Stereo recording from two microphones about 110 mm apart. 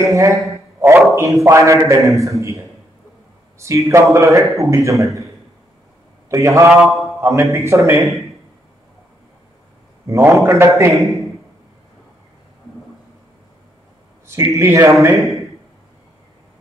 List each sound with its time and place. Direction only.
0.0 s a man's voice: 30° right (ahead or behind)
6.3 s a man's voice: 25° right (ahead or behind)
6.8 s mantra: centre (ahead or behind)
7.2 s a man's voice: 25° right (ahead or behind)
8.0 s speech: centre (ahead or behind)
10.0 s a man's voice: 25° right (ahead or behind)
11.0 s a man's voice: centre (ahead or behind)
14.2 s a man's voice: 25° right (ahead or behind)